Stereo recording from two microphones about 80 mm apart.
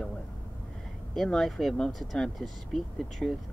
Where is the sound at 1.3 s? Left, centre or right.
Centre.